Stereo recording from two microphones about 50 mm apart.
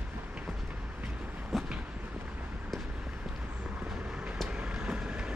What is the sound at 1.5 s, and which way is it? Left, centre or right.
Vehicle, centre.